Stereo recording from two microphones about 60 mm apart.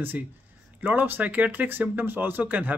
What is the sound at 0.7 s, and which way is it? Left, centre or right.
Speech, right.